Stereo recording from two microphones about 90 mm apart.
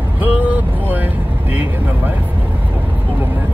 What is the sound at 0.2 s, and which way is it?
Vehicle, 20° right (ahead or behind).